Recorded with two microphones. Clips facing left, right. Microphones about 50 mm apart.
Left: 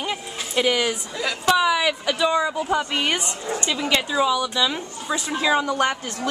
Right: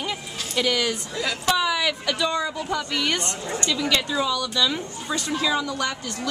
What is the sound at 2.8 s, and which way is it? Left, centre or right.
A woman's voice, left.